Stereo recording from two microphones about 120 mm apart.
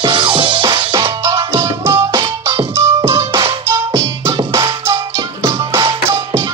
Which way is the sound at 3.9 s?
50° right (ahead or behind).